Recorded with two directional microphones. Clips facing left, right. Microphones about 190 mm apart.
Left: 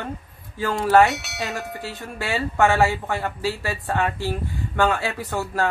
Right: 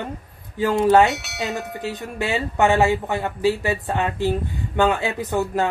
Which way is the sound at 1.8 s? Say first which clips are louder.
Right 5 dB; 20° right (ahead or behind).